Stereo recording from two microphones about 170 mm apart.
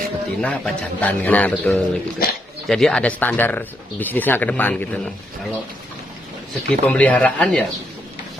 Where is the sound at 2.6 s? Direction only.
5° left (ahead or behind).